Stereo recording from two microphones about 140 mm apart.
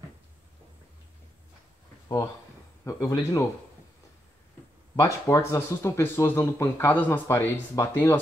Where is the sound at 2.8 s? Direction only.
25° left (ahead or behind).